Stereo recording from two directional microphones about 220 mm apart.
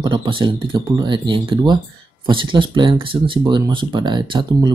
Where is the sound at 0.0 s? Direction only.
20° right (ahead or behind).